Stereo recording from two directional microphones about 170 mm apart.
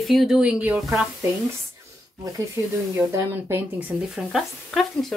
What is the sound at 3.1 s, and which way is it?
Speech, 15° right (ahead or behind).